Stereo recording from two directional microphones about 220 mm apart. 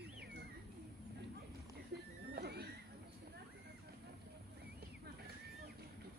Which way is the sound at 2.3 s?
45° right (ahead or behind).